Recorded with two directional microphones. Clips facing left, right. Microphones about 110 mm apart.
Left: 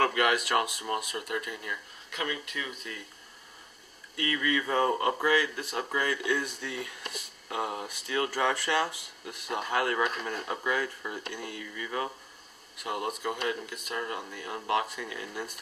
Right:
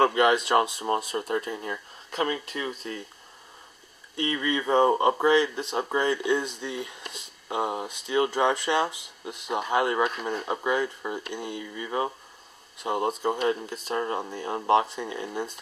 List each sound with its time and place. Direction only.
0.0 s speech: 25° right (ahead or behind)
4.2 s speech: 25° right (ahead or behind)